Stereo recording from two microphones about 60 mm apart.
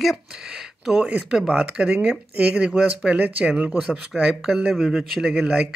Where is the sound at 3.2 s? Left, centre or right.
Right.